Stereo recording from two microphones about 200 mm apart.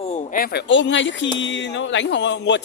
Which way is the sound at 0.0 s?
35° left (ahead or behind).